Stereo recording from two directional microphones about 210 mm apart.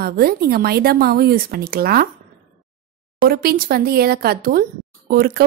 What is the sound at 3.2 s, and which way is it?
Speech, 45° right (ahead or behind).